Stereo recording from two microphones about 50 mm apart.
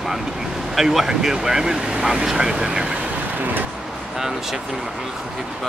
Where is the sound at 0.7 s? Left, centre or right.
Centre.